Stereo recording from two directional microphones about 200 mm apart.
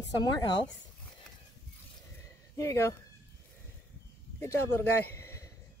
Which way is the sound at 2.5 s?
15° left (ahead or behind).